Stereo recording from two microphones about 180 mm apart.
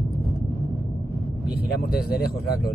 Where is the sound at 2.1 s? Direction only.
60° left (ahead or behind).